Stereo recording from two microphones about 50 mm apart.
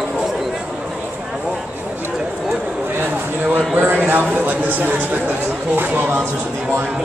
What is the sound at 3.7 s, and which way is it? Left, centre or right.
Speech, right.